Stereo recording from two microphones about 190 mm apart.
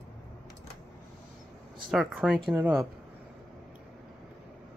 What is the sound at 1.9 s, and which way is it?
Speech, 5° right (ahead or behind).